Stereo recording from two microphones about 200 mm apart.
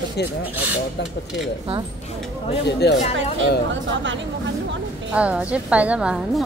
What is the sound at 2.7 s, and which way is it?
Speech, 55° left (ahead or behind).